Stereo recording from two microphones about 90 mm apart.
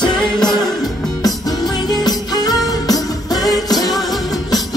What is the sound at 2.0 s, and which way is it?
Music, 45° left (ahead or behind).